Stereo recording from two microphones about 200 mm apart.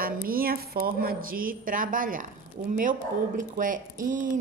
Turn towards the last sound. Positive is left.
turn(degrees=-40)  # may be behind; listen again after turning